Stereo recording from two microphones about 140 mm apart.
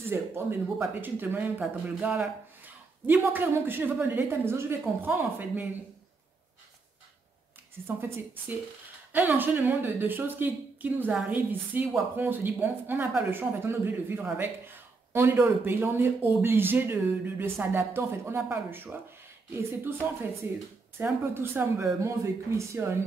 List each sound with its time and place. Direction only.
0.1 s speech: 15° right (ahead or behind)
7.8 s speech: 15° right (ahead or behind)
20.4 s speech: 15° right (ahead or behind)